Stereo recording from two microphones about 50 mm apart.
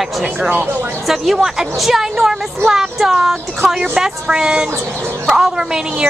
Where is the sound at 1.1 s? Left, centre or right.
Centre.